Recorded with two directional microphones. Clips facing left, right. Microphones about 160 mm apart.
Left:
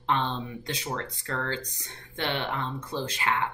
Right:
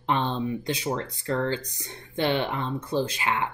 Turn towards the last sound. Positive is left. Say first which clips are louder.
# right 3 dB
turn(degrees=-10)  # may be behind; listen again after turning